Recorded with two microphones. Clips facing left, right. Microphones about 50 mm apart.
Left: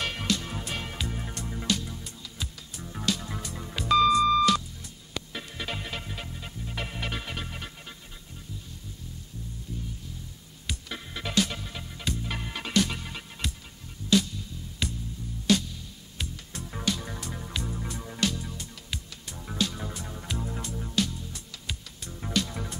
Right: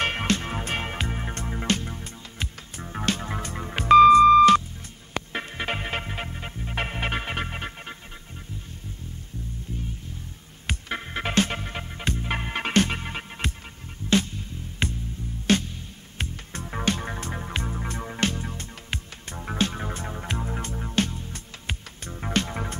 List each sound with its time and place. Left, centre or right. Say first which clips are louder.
0.0 s music: right 5 dB; right
10.7 s music: right 6 dB; right